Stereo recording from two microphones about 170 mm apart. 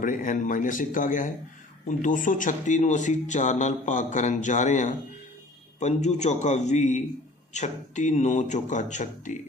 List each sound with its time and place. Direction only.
0.0 s speech: 50° left (ahead or behind)